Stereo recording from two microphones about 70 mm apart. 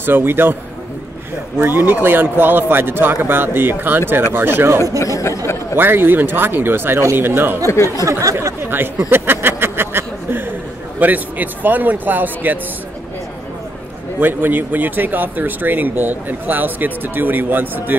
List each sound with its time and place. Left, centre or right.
0.0 s a man's voice: right
1.6 s a man's voice: right
4.9 s speech: left
5.8 s a man's voice: right
7.6 s speech: left
8.0 s a sound: right
8.5 s a sound: right
11.0 s speech: right
14.2 s speech: right